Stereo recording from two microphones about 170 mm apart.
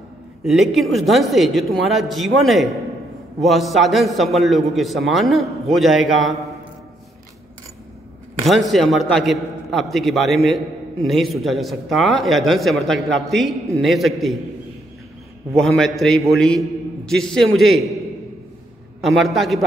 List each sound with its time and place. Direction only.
0.4 s a man's voice: centre (ahead or behind)
8.5 s a man's voice: centre (ahead or behind)
15.5 s a man's voice: 5° left (ahead or behind)
18.9 s a man's voice: centre (ahead or behind)